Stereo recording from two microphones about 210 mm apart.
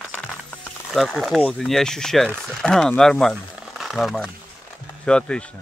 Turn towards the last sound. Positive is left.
turn(degrees=5)  # may be behind; listen again after turning